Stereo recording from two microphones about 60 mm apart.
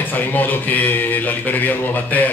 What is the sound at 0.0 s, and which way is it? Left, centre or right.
A man's voice, left.